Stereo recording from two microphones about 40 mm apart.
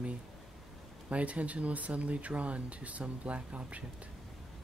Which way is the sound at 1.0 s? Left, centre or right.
Right.